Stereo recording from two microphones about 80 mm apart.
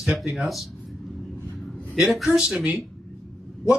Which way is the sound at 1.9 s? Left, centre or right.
Centre.